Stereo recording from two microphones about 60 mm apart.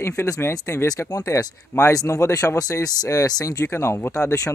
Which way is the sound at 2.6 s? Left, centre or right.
Left.